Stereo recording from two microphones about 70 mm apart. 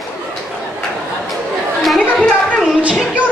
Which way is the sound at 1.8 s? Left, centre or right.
Centre.